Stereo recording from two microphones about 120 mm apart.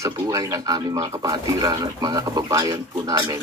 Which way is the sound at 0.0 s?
30° right (ahead or behind).